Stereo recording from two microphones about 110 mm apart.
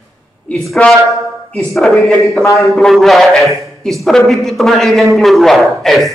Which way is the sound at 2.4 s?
30° left (ahead or behind).